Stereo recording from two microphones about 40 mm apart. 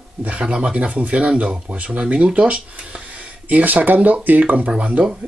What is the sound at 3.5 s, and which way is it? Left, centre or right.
Speech, right.